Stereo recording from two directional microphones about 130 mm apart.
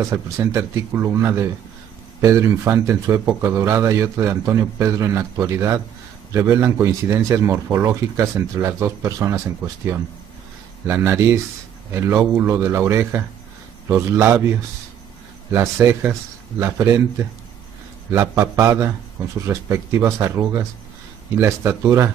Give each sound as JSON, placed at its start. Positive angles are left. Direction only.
{"t": 0.0, "sound": "a man's voice", "side_deg": -25}
{"t": 10.9, "sound": "a man's voice", "side_deg": -20}
{"t": 15.5, "sound": "a man's voice", "side_deg": -20}
{"t": 21.4, "sound": "a man's voice", "side_deg": -20}